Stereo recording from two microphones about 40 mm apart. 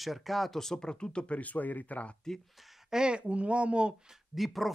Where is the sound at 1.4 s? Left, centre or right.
Left.